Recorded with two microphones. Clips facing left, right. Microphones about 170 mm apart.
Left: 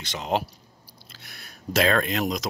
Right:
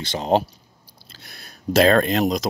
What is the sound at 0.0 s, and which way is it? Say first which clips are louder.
Speech: right 7 dB; 30° right (ahead or behind).